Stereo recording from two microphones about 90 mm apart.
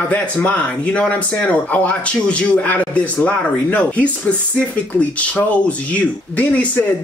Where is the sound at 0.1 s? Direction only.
15° left (ahead or behind).